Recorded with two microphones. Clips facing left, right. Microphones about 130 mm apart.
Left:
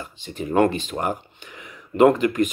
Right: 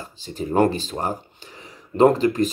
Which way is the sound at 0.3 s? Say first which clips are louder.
Even; 35° right (ahead or behind).